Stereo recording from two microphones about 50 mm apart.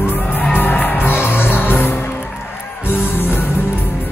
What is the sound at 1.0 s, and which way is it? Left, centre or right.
Music, left.